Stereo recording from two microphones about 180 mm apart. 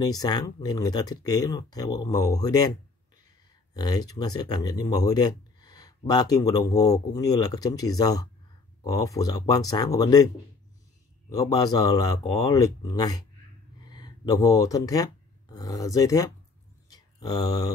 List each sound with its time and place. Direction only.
0.0 s speech: 20° left (ahead or behind)
3.7 s speech: 20° left (ahead or behind)
16.9 s a sound: 20° left (ahead or behind)